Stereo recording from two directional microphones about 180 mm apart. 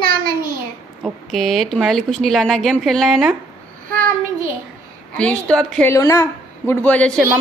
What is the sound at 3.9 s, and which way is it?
Child singing, 50° right (ahead or behind).